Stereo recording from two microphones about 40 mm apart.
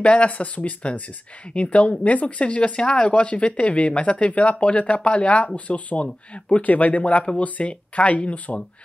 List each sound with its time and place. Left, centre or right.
0.0 s speech: left